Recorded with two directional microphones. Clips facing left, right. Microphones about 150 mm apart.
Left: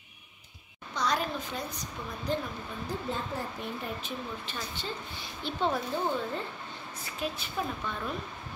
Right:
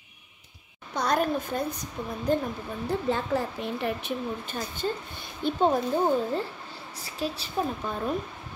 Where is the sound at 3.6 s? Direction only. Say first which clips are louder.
Right 5 dB; 90° right.